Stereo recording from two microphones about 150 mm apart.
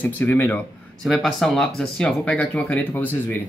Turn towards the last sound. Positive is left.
turn(degrees=15)  # may be behind; listen again after turning